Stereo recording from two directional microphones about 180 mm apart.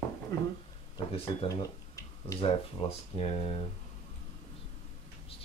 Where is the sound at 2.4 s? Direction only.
30° left (ahead or behind).